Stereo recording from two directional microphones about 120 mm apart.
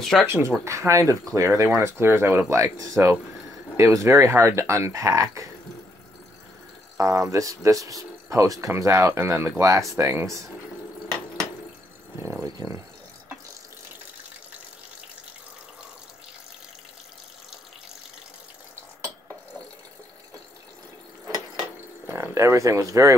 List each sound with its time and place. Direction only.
0.0 s speech: 5° left (ahead or behind)
0.3 s speech: 20° right (ahead or behind)
7.0 s speech: 25° right (ahead or behind)
12.2 s speech: 20° right (ahead or behind)
22.0 s speech: 20° right (ahead or behind)